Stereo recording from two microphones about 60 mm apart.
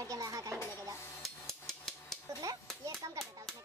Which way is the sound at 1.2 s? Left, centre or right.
Centre.